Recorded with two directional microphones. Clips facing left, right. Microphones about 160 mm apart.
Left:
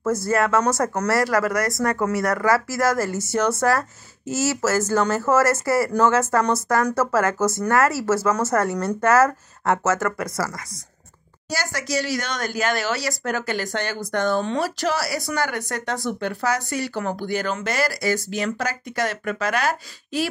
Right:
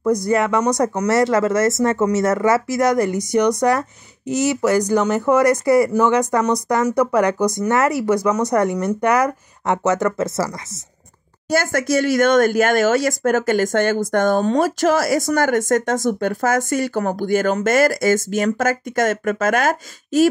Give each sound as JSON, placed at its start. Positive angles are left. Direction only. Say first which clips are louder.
{"t": 0.0, "sound": "speech", "louder": "right 4 dB", "side_deg": -15}
{"t": 11.5, "sound": "speech", "louder": "right 8 dB", "side_deg": -50}